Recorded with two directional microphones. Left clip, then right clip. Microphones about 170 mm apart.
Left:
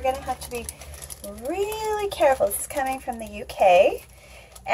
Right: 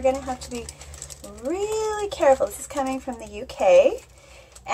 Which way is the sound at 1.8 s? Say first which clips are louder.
Left 4 dB; 10° right (ahead or behind).